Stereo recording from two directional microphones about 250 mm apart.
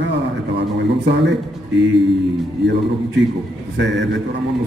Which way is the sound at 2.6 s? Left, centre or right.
Right.